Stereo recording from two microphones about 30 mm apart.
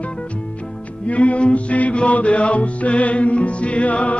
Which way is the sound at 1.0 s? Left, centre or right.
Left.